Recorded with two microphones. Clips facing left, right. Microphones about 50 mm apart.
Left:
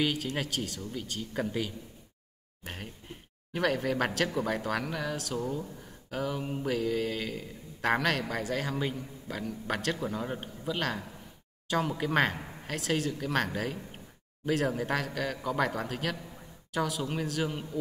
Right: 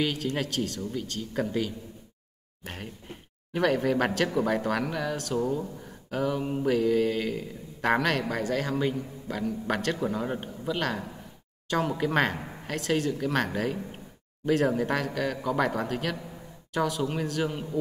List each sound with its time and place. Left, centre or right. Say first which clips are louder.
0.0 s mantra: right 2 dB; centre
5.4 s speech: right 5 dB; centre
6.0 s mantra: right 5 dB; centre
12.0 s mantra: right 2 dB; centre
13.6 s a sound: right 5 dB; centre
14.8 s mantra: right 4 dB; centre